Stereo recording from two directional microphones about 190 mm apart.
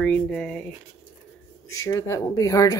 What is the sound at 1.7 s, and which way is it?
Speech, 15° left (ahead or behind).